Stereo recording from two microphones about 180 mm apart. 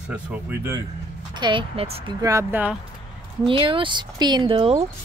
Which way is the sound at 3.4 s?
30° right (ahead or behind).